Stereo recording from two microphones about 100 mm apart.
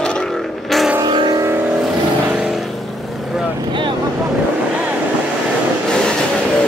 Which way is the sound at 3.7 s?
55° right (ahead or behind).